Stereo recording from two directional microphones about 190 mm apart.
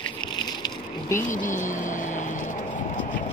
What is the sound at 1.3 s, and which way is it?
Vehicle, 40° left (ahead or behind).